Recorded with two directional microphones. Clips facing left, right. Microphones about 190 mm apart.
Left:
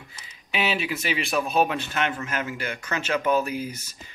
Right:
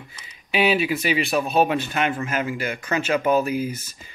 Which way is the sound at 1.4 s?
30° right (ahead or behind).